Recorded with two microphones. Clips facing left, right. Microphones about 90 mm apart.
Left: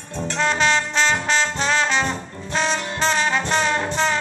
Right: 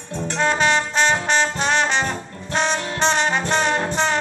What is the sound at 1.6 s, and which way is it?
Brass instrument, 20° right (ahead or behind).